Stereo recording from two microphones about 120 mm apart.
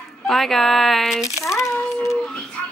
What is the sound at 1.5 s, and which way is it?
Speech, 25° left (ahead or behind).